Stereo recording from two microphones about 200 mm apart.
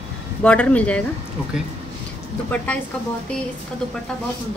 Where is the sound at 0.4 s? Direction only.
5° left (ahead or behind).